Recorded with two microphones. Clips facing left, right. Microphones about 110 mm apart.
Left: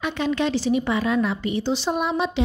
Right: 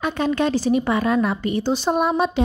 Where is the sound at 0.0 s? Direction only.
45° right (ahead or behind).